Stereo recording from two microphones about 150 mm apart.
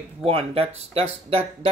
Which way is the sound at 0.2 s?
40° right (ahead or behind).